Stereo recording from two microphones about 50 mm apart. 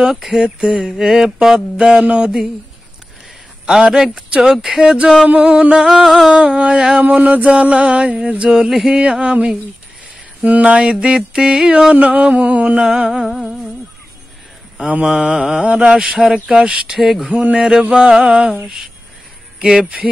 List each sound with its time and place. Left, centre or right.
0.1 s mantra: centre
3.6 s mantra: centre
5.9 s mantra: centre
6.3 s mantra: right
8.6 s mantra: centre
9.0 s mantra: centre
13.1 s music: centre
14.8 s mantra: right
15.6 s mantra: right